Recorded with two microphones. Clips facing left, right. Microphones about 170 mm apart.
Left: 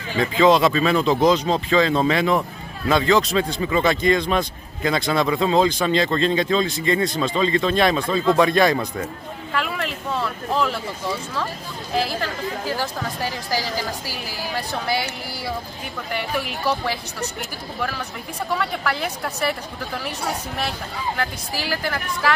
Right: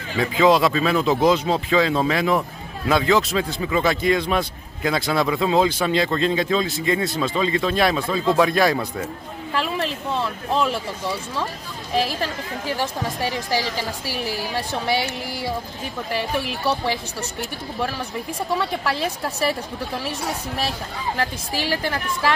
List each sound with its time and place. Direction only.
0.2 s speech: 5° right (ahead or behind)
9.5 s a sound: 30° right (ahead or behind)
16.1 s a woman's voice: 30° right (ahead or behind)
21.2 s a woman's voice: 25° right (ahead or behind)